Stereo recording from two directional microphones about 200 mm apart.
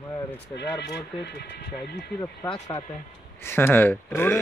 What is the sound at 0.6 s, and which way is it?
Speech, 55° left (ahead or behind).